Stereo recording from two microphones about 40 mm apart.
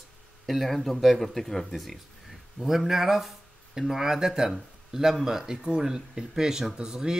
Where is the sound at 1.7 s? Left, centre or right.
Centre.